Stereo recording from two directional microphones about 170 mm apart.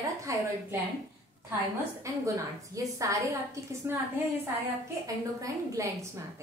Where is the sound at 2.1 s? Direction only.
20° right (ahead or behind).